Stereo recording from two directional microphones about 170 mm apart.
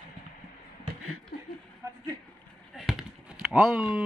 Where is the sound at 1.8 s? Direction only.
15° right (ahead or behind).